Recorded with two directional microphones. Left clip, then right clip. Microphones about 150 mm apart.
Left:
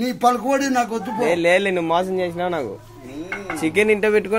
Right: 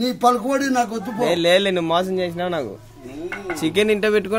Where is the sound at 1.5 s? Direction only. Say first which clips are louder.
Right 1 dB; 60° right (ahead or behind).